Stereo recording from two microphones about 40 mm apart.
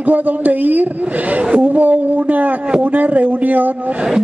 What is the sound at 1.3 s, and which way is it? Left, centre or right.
A woman's voice, right.